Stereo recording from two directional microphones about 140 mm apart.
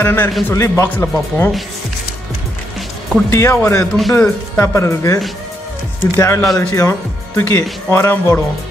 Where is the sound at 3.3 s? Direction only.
20° left (ahead or behind).